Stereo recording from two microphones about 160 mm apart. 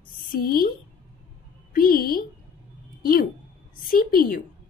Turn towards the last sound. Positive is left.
turn(degrees=60)  # may be behind; listen again after turning